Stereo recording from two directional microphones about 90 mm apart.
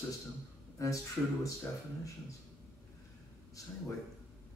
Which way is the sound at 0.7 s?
35° left (ahead or behind).